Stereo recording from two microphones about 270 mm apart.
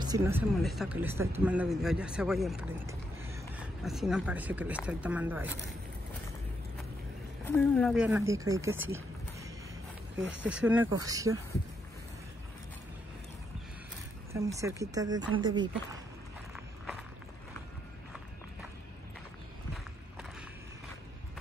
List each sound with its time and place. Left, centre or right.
0.0 s speech: centre
7.4 s speech: centre
14.6 s speech: centre
16.5 s walk: centre